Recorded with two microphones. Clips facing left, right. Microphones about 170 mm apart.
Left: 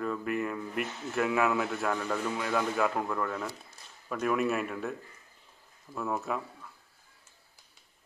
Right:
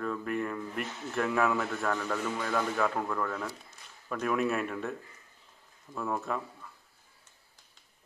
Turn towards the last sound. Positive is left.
turn(degrees=5)  # may be behind; listen again after turning